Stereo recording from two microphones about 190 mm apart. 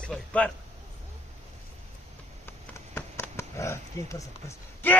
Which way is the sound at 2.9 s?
10° left (ahead or behind).